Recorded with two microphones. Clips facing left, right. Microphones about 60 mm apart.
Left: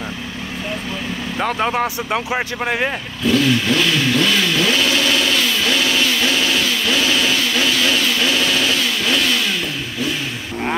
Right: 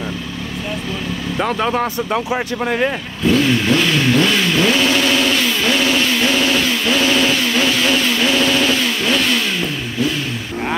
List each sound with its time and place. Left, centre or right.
1.6 s speech: centre
2.1 s speech: left
4.1 s vehicle: centre
5.6 s a sound: centre